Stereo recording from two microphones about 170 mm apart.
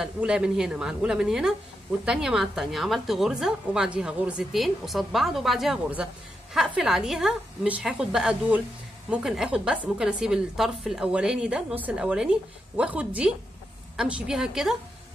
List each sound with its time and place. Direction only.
0.0 s a woman's voice: 5° right (ahead or behind)